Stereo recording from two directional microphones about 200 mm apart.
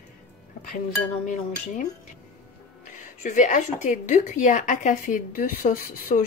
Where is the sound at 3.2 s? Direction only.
40° left (ahead or behind).